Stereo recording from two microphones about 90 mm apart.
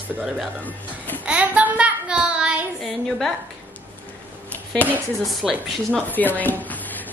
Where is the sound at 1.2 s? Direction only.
15° right (ahead or behind).